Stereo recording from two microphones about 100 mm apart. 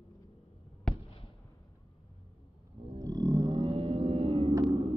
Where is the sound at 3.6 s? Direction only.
75° right (ahead or behind).